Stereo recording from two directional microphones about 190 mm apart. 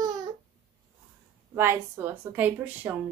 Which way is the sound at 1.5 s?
15° right (ahead or behind).